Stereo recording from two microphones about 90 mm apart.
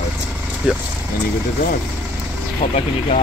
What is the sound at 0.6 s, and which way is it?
Speech, 15° right (ahead or behind).